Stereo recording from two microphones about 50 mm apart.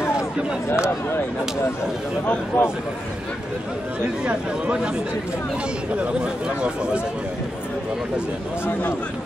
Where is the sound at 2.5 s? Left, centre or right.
Left.